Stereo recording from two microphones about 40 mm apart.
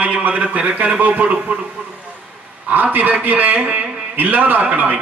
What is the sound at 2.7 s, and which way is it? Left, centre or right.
A man's voice, right.